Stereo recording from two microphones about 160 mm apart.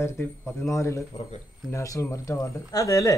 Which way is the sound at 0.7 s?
20° left (ahead or behind).